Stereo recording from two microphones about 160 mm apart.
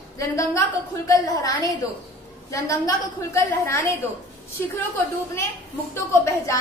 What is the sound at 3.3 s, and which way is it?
Speech, 15° left (ahead or behind).